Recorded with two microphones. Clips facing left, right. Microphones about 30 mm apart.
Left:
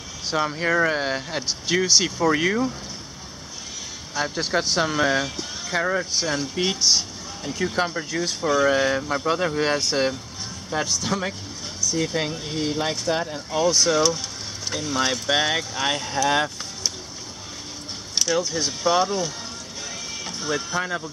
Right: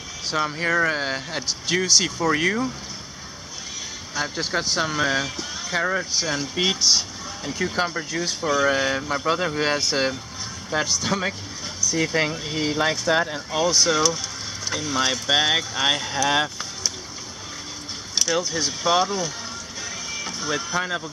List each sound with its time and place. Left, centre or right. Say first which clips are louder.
0.3 s speech: even; centre
4.1 s speech: left 2 dB; centre; by 13.6 s right
13.6 s speech: left 1 dB; centre
18.1 s speech: even; centre
20.2 s speech: left 1 dB; centre